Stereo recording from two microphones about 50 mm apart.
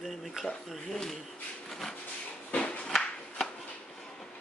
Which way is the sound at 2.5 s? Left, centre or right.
Left.